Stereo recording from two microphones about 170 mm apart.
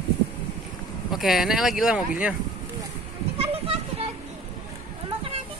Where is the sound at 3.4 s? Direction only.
35° right (ahead or behind).